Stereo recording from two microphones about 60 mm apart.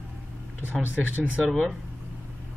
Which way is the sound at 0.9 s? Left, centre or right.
Right.